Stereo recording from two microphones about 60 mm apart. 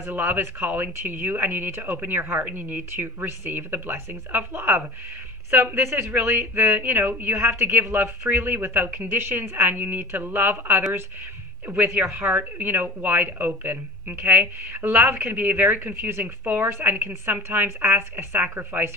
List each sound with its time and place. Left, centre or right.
0.1 s speech: right
5.8 s speech: right
6.7 s speech: right